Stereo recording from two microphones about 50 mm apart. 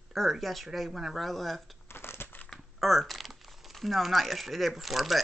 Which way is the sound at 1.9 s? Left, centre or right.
Left.